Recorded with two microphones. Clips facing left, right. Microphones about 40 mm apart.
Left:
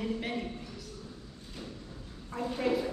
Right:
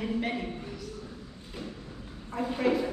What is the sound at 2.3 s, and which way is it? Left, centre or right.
Speech, centre.